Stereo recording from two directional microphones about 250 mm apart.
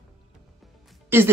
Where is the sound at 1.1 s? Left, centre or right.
Centre.